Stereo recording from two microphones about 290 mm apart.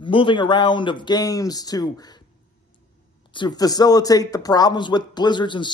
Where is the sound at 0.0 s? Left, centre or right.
Centre.